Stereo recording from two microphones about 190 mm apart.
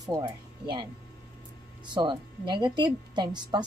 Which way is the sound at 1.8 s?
25° right (ahead or behind).